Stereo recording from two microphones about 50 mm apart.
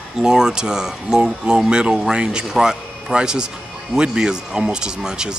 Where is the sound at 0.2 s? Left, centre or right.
Centre.